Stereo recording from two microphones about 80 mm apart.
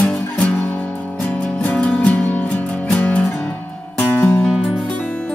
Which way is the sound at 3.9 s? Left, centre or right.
Left.